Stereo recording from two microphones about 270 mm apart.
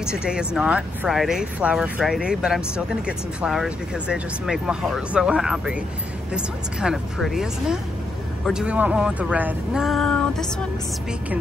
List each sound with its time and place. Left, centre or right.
0.0 s speech: centre